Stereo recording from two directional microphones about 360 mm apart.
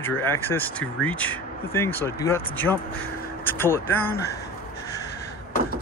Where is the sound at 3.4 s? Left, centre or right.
Centre.